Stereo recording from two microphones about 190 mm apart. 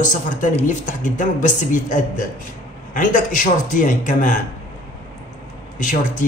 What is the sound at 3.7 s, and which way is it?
Speech, 45° left (ahead or behind).